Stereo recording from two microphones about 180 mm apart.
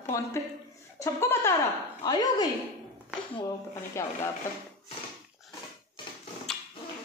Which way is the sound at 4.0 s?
15° left (ahead or behind).